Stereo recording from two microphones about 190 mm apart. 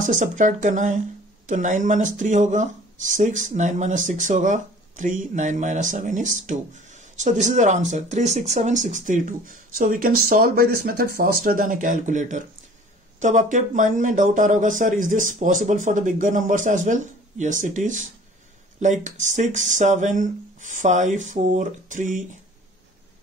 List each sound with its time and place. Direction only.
0.0 s speech: 45° right (ahead or behind)